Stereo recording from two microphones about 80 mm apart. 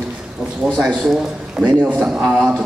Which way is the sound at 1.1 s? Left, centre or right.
Centre.